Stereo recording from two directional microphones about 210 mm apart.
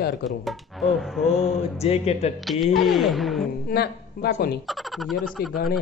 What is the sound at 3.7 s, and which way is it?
Speech, 50° left (ahead or behind).